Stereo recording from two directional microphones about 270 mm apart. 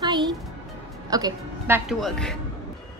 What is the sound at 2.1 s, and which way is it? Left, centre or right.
Speech, centre.